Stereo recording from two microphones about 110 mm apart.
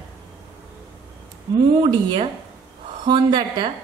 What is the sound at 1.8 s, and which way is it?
A woman's voice, 50° right (ahead or behind).